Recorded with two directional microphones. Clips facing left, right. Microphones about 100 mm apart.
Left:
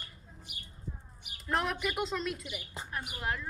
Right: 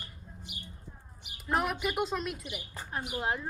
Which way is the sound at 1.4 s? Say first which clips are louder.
Right 2 dB; 5° right (ahead or behind).